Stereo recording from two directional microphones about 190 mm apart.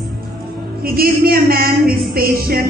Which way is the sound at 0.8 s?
50° right (ahead or behind).